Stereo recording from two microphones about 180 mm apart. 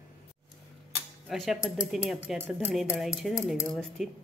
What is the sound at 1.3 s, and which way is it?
A woman's voice, centre (ahead or behind).